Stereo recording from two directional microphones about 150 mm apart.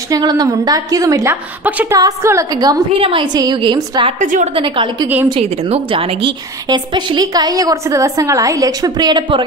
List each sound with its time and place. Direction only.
0.1 s a woman's voice: 25° right (ahead or behind)
1.3 s a woman's voice: 10° right (ahead or behind)
2.0 s a woman's voice: 20° right (ahead or behind)
3.0 s a woman's voice: 35° right (ahead or behind)
4.2 s a woman's voice: 55° right (ahead or behind)
4.6 s a woman's voice: 35° right (ahead or behind)